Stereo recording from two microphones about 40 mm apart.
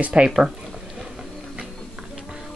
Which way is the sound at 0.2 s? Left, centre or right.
Right.